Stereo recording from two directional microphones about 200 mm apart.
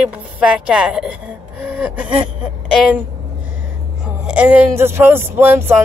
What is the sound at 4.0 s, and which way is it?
Speech, 5° right (ahead or behind).